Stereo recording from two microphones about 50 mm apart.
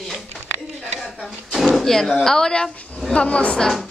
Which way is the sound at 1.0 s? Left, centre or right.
Centre.